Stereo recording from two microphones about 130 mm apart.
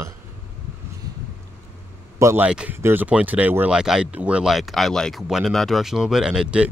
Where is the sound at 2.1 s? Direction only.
25° right (ahead or behind).